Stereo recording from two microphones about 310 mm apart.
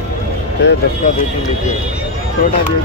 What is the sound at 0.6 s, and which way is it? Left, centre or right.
Speech, left.